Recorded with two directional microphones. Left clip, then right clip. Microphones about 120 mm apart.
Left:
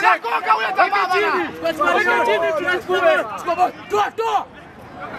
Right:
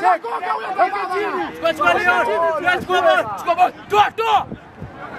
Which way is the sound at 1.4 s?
35° right (ahead or behind).